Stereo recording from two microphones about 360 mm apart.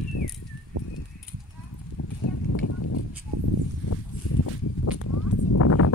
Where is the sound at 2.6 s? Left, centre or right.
Left.